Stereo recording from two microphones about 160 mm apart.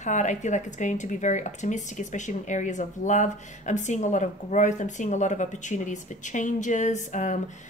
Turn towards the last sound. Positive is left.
turn(degrees=50)  # may be behind; listen again after turning